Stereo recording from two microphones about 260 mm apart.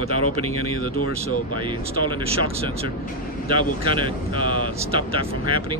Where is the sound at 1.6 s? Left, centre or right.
Centre.